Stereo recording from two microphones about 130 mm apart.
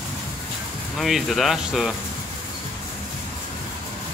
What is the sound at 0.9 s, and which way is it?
Speech, centre (ahead or behind).